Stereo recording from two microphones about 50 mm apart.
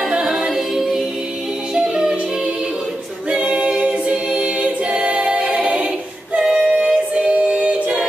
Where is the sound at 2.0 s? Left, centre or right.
Centre.